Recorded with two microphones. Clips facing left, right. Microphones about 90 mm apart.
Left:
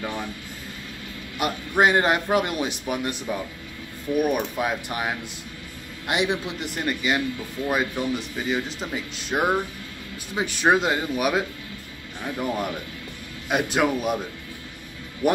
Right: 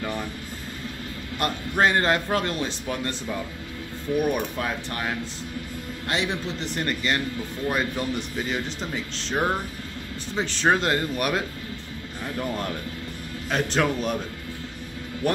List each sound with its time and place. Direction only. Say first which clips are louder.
1.4 s speech: left 2 dB; 15° left (ahead or behind)
15.2 s speech: left 3 dB; 15° left (ahead or behind)